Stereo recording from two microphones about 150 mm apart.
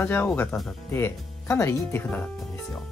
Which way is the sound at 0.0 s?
10° left (ahead or behind).